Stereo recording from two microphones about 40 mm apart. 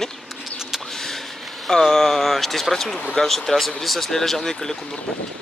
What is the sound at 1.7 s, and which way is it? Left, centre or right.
Speech, centre.